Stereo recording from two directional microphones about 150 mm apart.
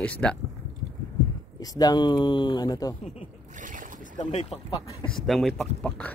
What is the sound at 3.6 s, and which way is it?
Boat, 60° right (ahead or behind).